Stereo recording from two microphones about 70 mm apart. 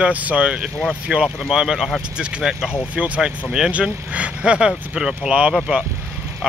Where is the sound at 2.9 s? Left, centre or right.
Centre.